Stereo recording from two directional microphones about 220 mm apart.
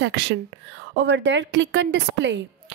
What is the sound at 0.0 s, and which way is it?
Speech, 55° right (ahead or behind).